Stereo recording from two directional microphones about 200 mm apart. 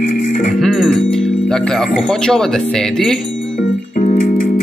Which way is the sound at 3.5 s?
40° left (ahead or behind).